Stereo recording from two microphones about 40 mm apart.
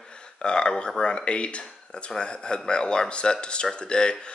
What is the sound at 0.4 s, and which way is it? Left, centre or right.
Speech, left.